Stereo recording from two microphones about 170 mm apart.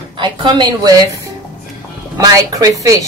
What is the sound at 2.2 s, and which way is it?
Speech, 20° right (ahead or behind).